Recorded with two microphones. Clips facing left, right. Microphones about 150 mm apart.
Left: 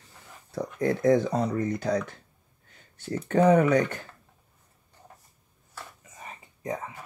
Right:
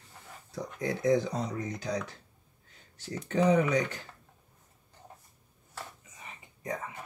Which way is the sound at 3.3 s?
55° left (ahead or behind).